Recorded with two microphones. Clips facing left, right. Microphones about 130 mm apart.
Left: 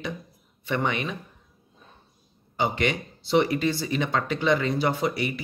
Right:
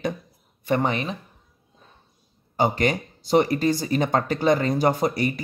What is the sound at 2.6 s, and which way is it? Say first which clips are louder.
Speech: right 4 dB; 40° right (ahead or behind).